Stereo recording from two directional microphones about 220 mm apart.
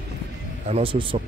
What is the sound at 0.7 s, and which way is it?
Speech, 25° right (ahead or behind).